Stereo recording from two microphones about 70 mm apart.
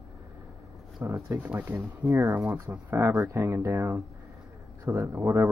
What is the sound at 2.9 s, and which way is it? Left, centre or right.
Speech, right.